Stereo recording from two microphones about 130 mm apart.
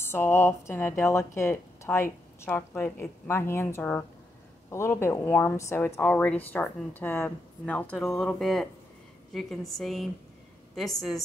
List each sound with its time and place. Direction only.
0.0 s speech: 20° left (ahead or behind)
5.9 s a woman's voice: 10° left (ahead or behind)